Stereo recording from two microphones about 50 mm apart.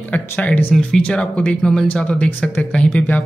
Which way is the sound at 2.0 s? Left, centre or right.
Left.